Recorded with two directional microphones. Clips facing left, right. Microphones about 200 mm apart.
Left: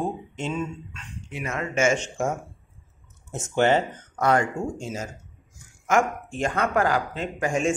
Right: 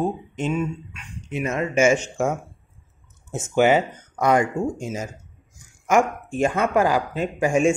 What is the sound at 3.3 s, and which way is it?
Speech, 5° right (ahead or behind).